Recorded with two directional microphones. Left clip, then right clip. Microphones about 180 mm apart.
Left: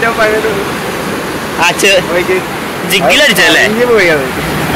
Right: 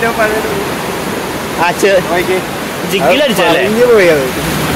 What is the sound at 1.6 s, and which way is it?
Speech, 20° right (ahead or behind).